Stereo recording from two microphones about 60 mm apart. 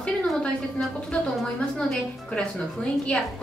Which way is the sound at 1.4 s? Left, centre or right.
Centre.